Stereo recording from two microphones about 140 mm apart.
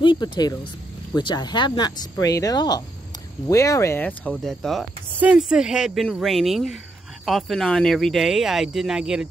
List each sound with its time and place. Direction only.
0.0 s speech: 35° left (ahead or behind); by 9.3 s 5° right (ahead or behind)